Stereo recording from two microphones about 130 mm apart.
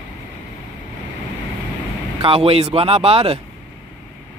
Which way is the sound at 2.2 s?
45° right (ahead or behind).